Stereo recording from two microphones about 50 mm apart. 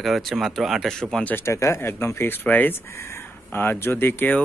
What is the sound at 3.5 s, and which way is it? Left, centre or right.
Speech, left.